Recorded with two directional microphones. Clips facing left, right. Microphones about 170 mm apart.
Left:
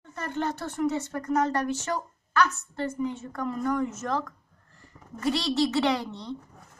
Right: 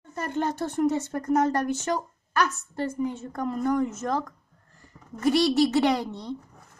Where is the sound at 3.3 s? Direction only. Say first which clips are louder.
Right 3 dB; 20° right (ahead or behind).